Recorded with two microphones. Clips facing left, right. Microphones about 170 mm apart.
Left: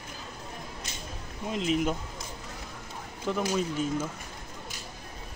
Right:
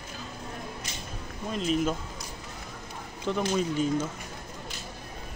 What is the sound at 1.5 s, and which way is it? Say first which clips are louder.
Speech: even; 15° left (ahead or behind).